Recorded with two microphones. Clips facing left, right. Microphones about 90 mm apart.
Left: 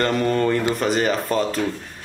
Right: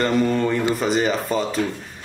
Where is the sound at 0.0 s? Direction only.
5° right (ahead or behind).